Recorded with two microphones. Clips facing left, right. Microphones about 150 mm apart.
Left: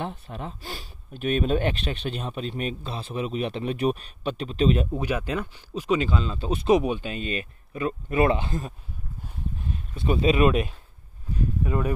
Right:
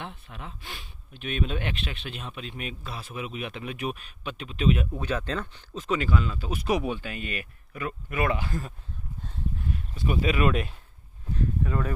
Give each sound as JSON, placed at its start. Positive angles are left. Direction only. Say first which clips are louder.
{"t": 0.0, "sound": "speech", "louder": "left 7 dB", "side_deg": 40}
{"t": 4.9, "sound": "speech", "louder": "left 3 dB", "side_deg": 15}